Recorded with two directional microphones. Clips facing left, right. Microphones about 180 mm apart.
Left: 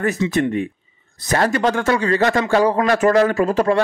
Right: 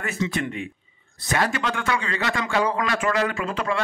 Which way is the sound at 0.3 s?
40° left (ahead or behind).